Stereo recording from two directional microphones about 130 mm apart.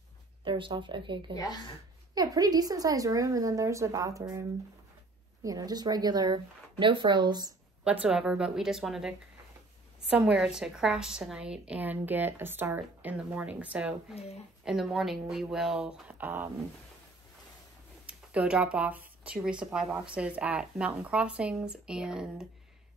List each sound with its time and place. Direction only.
0.4 s speech: 40° right (ahead or behind)
1.3 s a woman's voice: 30° left (ahead or behind)
2.1 s a woman's voice: 30° right (ahead or behind)
7.8 s speech: 10° right (ahead or behind)
14.1 s speech: 55° left (ahead or behind)
14.6 s speech: 5° right (ahead or behind)
18.0 s speech: 10° right (ahead or behind)